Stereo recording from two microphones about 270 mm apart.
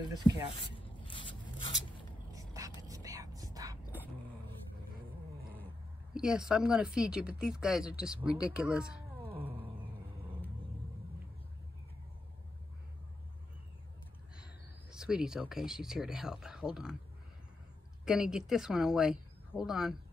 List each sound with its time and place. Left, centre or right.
0.2 s speech: centre
0.6 s a sound: centre
2.3 s a sound: centre
2.8 s whispering: centre
6.1 s speech: centre
9.4 s cat: centre
14.3 s speech: centre
18.0 s speech: centre